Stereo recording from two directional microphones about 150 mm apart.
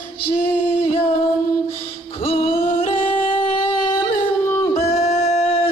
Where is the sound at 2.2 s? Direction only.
40° left (ahead or behind).